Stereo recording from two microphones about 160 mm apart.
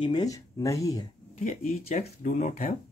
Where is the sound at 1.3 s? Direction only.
50° left (ahead or behind).